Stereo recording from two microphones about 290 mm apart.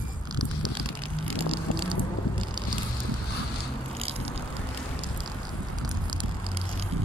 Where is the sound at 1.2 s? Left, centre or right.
Centre.